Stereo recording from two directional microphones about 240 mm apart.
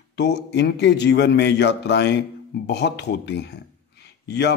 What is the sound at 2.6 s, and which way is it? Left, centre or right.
A man's voice, left.